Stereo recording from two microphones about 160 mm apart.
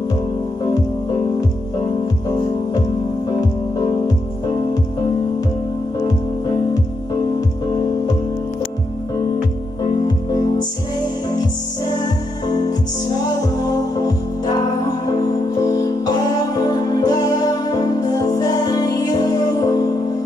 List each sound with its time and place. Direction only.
3.3 s music: 25° left (ahead or behind)
6.4 s music: 25° left (ahead or behind)
9.8 s music: 25° left (ahead or behind)
13.2 s music: 25° left (ahead or behind)